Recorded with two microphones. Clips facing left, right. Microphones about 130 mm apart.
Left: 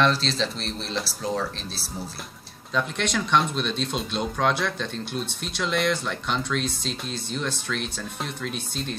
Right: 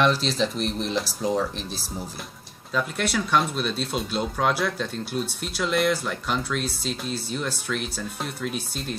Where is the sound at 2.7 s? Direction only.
5° right (ahead or behind).